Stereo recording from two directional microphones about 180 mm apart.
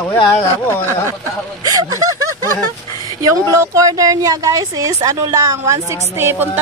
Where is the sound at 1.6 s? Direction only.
20° right (ahead or behind).